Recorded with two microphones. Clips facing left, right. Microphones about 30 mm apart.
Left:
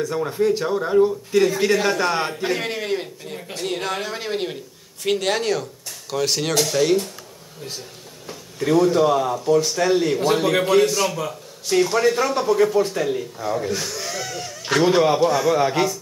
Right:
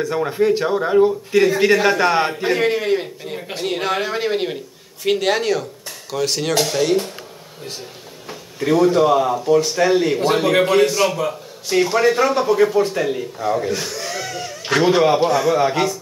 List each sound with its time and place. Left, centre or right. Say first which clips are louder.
0.0 s speech: right 3 dB; right
3.3 s speech: right 2 dB; centre
6.5 s speech: right 3 dB; centre
8.3 s speech: right 2 dB; centre